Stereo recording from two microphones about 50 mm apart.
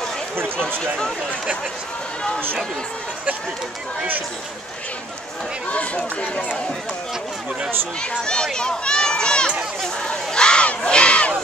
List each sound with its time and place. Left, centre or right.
0.4 s speech: right
5.7 s speech: left
8.2 s speech: centre
10.0 s crowd: centre